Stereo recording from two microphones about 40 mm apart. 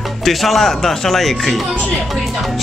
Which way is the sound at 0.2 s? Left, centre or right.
Centre.